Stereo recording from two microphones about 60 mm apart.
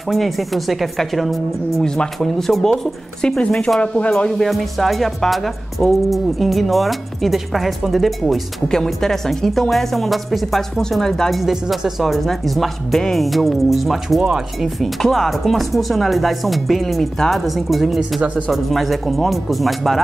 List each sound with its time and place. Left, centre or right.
0.1 s a woman's voice: centre
4.3 s a woman's voice: centre